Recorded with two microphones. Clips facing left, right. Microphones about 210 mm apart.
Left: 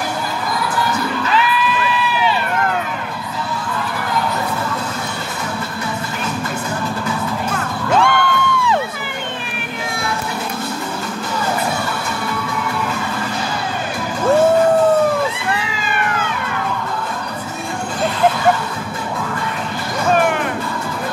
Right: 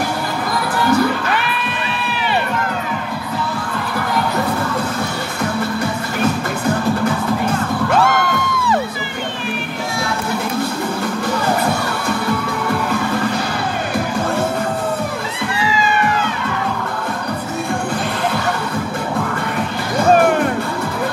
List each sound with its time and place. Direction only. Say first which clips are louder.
1.3 s crowd: left 4 dB; 60° right (ahead or behind)